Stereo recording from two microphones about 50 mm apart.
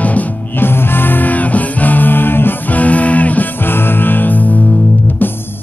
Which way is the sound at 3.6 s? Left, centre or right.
Left.